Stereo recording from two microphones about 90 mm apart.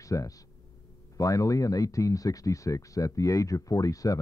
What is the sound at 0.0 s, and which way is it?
Speech, 40° left (ahead or behind).